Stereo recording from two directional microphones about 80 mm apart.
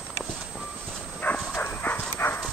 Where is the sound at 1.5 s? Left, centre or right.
Left.